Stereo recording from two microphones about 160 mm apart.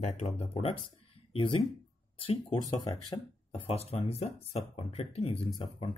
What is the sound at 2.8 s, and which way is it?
Speech, 30° left (ahead or behind).